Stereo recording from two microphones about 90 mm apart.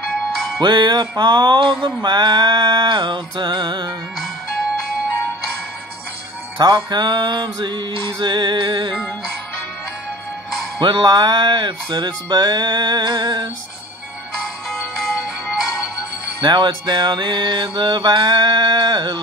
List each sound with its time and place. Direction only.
0.6 s mantra: 60° right (ahead or behind)
6.6 s mantra: 55° right (ahead or behind)
10.8 s music: 60° right (ahead or behind)
14.7 s music: 5° left (ahead or behind)
16.3 s mantra: 60° right (ahead or behind)